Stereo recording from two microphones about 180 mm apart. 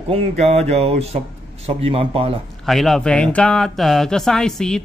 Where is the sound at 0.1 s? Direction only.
35° right (ahead or behind).